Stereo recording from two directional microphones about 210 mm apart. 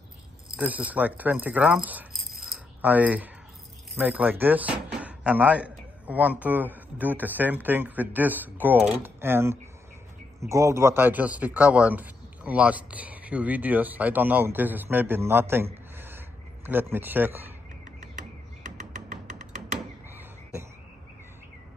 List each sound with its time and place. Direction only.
0.6 s a man's voice: 5° right (ahead or behind)
18.1 s frog: 35° right (ahead or behind)
20.1 s frog: 10° right (ahead or behind)